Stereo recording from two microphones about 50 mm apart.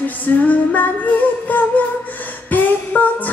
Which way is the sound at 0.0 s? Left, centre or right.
Left.